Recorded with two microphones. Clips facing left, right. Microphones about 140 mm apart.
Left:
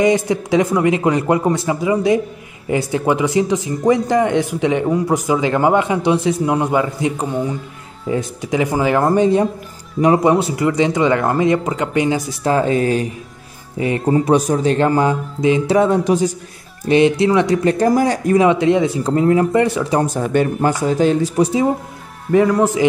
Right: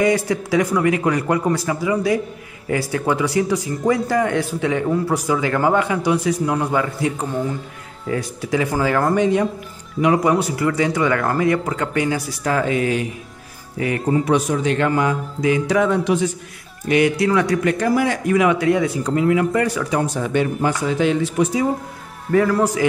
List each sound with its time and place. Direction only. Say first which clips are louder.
0.0 s speech: left 3 dB; 20° left (ahead or behind)
9.1 s speech: left 3 dB; 35° left (ahead or behind)
16.8 s speech: left 4 dB; 25° left (ahead or behind)
19.5 s speech: left 4 dB; 25° left (ahead or behind)
20.0 s speech: left 3 dB; 45° left (ahead or behind)
22.3 s speech: left 3 dB; 20° left (ahead or behind)